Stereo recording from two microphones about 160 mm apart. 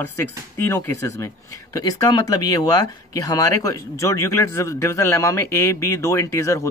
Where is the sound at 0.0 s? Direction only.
15° left (ahead or behind).